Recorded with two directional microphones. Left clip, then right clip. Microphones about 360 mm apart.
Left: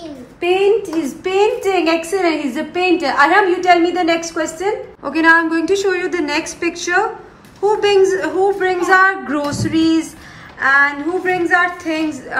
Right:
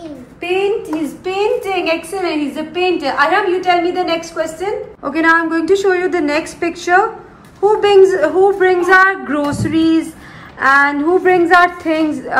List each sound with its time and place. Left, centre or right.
0.4 s a woman's voice: left
5.0 s a woman's voice: centre